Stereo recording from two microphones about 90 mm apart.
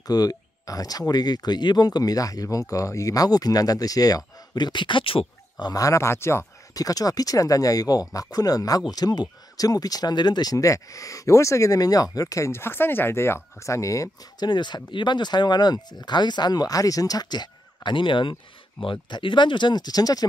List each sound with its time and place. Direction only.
0.0 s speech: 45° left (ahead or behind)
4.6 s speech: 55° left (ahead or behind); by 5.2 s 80° left
5.6 s speech: 45° left (ahead or behind)
6.7 s speech: 45° left (ahead or behind)
14.4 s speech: 55° left (ahead or behind)